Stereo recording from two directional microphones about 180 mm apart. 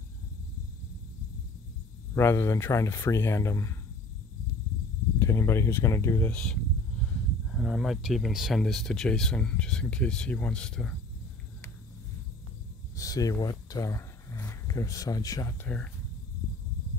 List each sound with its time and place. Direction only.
2.1 s speech: 15° left (ahead or behind)
5.2 s speech: 15° left (ahead or behind)
12.9 s speech: 20° left (ahead or behind)